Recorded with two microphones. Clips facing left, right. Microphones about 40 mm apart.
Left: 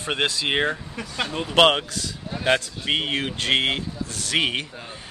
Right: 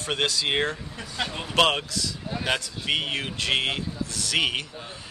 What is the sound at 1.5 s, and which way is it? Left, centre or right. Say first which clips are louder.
Speech: left 4 dB; left.